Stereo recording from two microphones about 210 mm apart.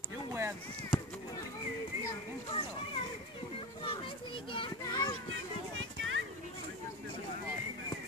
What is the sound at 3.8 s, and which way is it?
A child's voice, 25° left (ahead or behind).